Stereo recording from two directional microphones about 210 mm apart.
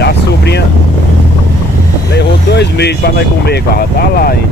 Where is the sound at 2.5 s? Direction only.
55° left (ahead or behind).